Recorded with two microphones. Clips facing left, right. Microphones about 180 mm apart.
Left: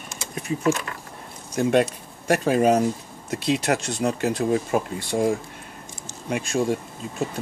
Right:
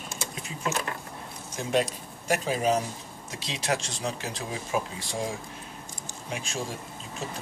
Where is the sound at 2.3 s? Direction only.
60° left (ahead or behind).